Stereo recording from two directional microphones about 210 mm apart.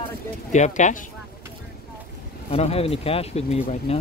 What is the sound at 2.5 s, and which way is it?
Speech, 30° left (ahead or behind).